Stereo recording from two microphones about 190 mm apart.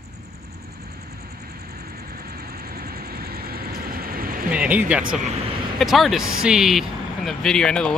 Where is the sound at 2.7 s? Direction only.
55° right (ahead or behind).